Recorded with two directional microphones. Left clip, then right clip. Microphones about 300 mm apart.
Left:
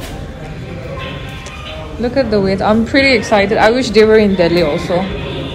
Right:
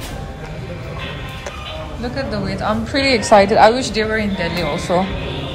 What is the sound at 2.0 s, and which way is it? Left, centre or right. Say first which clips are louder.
A woman's voice: left 11 dB; centre.